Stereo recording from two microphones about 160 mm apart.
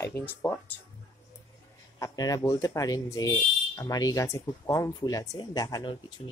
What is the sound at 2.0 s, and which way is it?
Speech, 20° left (ahead or behind).